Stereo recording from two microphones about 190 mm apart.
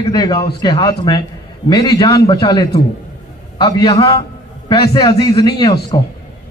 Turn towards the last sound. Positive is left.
turn(degrees=20)  # may be behind; listen again after turning